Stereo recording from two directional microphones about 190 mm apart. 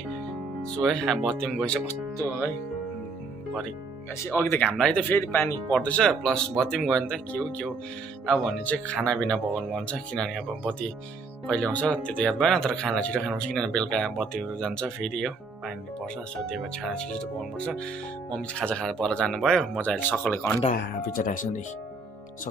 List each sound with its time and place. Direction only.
0.6 s speech: centre (ahead or behind)
4.2 s speech: 15° left (ahead or behind)
20.7 s speech: 45° left (ahead or behind)